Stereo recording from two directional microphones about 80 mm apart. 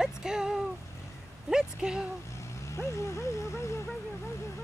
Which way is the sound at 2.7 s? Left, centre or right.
Left.